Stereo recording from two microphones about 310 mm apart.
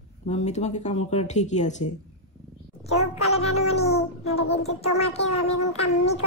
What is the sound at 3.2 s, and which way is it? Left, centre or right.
Music, centre.